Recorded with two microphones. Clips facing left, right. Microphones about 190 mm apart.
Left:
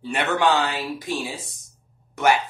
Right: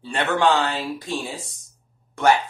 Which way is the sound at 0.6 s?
15° left (ahead or behind).